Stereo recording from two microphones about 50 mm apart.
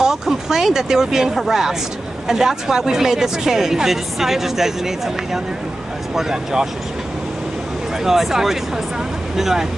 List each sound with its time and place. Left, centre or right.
0.0 s speech: centre
8.0 s speech: centre